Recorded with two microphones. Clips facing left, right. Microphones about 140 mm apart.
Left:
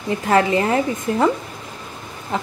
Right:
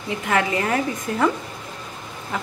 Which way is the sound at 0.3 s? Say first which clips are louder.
Left 5 dB; 30° left (ahead or behind).